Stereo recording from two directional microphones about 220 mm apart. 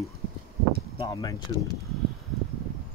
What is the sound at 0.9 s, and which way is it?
Speech, 15° left (ahead or behind).